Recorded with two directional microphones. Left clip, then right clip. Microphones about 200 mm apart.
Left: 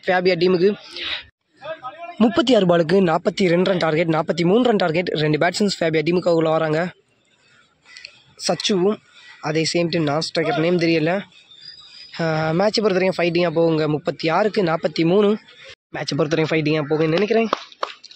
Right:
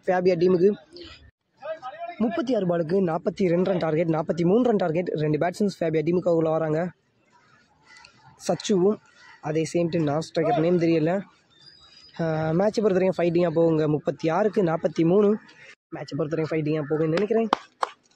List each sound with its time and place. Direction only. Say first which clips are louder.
0.0 s speech: left 4 dB; 5° right (ahead or behind)
1.6 s chatter: left 2 dB; 55° right (ahead or behind)
2.1 s speech: left 9 dB; 5° left (ahead or behind)
8.4 s speech: left 5 dB; 5° right (ahead or behind)
8.8 s a sound: left 3 dB; centre (ahead or behind)
9.8 s speech: left 4 dB; centre (ahead or behind)
12.6 s speech: left 3 dB; 5° right (ahead or behind)